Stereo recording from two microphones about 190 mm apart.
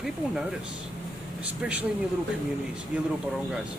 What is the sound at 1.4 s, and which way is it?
Speech, 5° right (ahead or behind).